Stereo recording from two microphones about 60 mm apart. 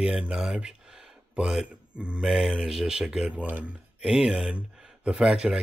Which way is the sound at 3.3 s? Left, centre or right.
Right.